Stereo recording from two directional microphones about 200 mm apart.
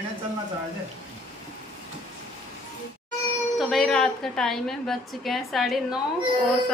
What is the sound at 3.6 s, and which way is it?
A woman's voice, centre (ahead or behind).